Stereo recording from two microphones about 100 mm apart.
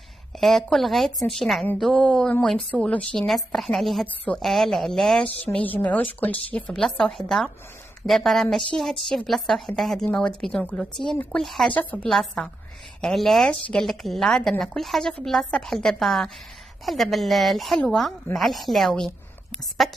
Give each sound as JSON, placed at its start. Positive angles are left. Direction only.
{"t": 0.4, "sound": "a woman's voice", "side_deg": 5}
{"t": 6.5, "sound": "a woman's voice", "side_deg": 5}
{"t": 11.7, "sound": "a woman's voice", "side_deg": 15}
{"t": 12.1, "sound": "a woman's voice", "side_deg": 5}